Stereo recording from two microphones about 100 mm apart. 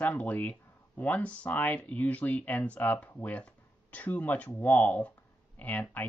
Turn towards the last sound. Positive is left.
turn(degrees=15)  # may be behind; listen again after turning